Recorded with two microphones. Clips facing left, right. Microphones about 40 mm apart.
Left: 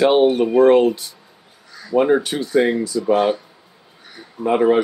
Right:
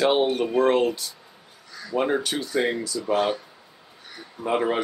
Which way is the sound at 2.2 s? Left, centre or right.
Left.